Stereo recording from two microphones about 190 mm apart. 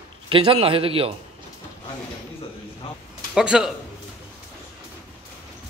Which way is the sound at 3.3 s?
5° right (ahead or behind).